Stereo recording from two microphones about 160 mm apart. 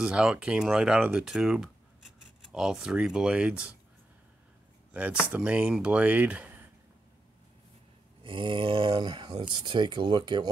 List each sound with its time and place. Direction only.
0.0 s speech: 5° right (ahead or behind)
4.9 s speech: 10° right (ahead or behind)
8.2 s speech: 30° right (ahead or behind)